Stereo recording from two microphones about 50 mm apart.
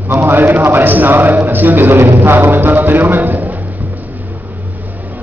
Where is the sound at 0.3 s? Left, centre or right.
Right.